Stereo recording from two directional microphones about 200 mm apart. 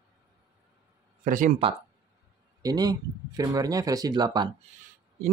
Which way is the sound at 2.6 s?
20° right (ahead or behind).